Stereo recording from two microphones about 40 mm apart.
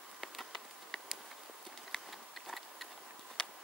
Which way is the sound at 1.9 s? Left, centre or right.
Centre.